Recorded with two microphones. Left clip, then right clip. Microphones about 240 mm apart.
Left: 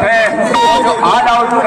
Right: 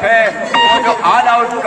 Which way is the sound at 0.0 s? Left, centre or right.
Centre.